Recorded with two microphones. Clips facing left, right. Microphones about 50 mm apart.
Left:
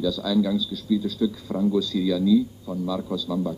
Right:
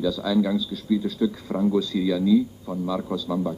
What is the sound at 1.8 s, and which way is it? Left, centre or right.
A man's voice, right.